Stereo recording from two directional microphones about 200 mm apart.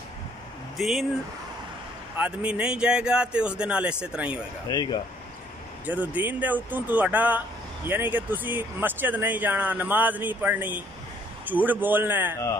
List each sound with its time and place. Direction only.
0.7 s speech: centre (ahead or behind)
2.1 s speech: 5° right (ahead or behind)
4.6 s speech: 20° left (ahead or behind)
5.9 s speech: 10° right (ahead or behind)